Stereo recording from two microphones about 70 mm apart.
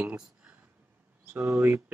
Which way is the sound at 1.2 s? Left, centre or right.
Right.